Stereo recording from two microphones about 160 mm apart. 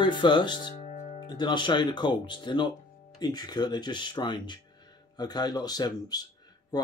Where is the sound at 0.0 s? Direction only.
30° left (ahead or behind).